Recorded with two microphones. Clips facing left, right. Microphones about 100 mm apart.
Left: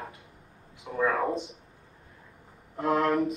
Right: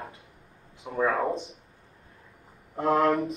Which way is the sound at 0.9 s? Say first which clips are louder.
Right 2 dB; 30° right (ahead or behind).